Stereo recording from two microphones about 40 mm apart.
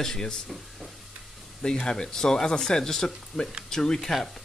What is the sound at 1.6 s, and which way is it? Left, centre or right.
Speech, left.